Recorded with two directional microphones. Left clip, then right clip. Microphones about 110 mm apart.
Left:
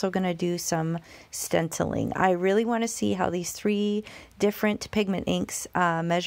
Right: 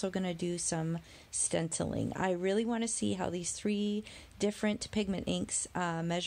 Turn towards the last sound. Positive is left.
turn(degrees=30)  # may be behind; listen again after turning